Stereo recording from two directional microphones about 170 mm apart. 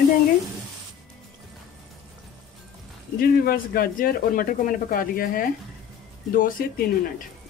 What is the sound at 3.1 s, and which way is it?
Speech, 60° left (ahead or behind).